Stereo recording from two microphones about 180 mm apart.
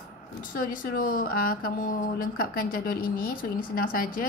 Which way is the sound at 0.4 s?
50° left (ahead or behind).